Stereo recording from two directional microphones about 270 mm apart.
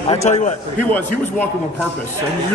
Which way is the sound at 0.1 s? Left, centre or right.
Left.